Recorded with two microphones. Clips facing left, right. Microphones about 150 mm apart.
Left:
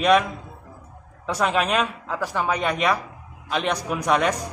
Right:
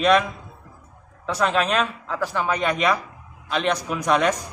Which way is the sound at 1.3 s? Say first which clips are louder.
Even; 5° left (ahead or behind).